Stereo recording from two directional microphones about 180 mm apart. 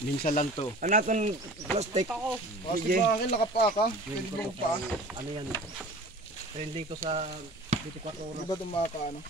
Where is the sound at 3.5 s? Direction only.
65° left (ahead or behind).